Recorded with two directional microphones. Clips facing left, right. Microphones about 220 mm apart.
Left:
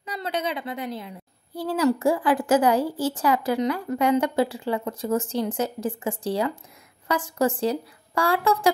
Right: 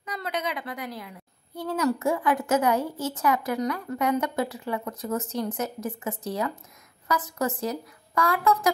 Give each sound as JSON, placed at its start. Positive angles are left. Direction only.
{"t": 0.0, "sound": "a woman's voice", "side_deg": 30}